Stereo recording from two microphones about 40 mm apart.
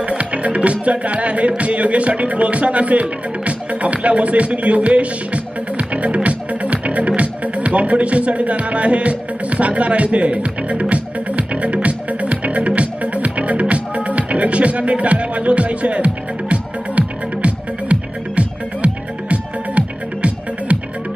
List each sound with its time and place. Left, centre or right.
0.0 s music: right